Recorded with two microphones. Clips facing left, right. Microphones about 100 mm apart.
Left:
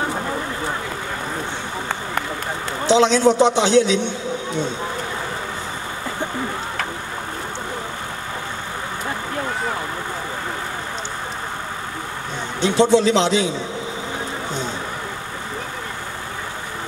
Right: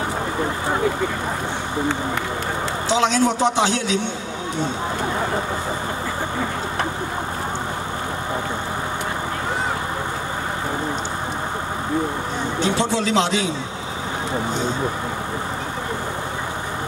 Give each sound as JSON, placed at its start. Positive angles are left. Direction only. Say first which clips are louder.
{"t": 2.9, "sound": "a man's voice", "louder": "left 5 dB", "side_deg": 20}
{"t": 12.6, "sound": "a man's voice", "louder": "left 7 dB", "side_deg": 20}